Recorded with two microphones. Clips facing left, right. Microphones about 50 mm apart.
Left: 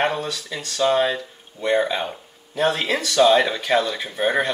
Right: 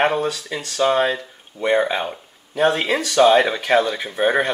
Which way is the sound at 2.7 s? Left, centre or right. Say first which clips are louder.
Right 2 dB; centre.